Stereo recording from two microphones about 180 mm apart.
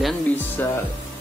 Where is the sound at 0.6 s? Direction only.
10° left (ahead or behind).